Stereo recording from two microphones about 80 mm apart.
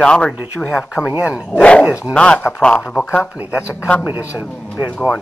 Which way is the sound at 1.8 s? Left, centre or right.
Centre.